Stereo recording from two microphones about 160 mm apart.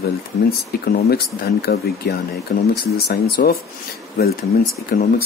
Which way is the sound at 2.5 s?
55° left (ahead or behind).